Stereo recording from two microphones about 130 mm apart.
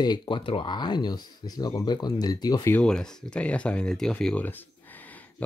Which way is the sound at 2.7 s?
5° left (ahead or behind).